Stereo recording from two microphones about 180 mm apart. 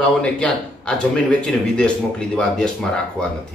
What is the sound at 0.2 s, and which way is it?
A man's voice, 5° left (ahead or behind).